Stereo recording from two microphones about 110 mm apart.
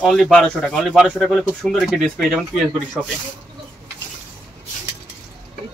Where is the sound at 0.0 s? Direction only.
5° left (ahead or behind).